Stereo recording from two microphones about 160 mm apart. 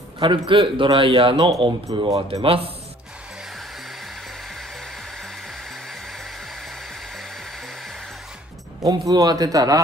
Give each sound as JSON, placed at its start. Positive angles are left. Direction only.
{"t": 0.2, "sound": "a man's voice", "side_deg": -30}
{"t": 2.4, "sound": "a man's voice", "side_deg": -35}
{"t": 8.8, "sound": "a man's voice", "side_deg": -25}